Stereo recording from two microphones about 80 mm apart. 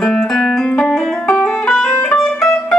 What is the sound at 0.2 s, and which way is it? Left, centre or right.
Music, centre.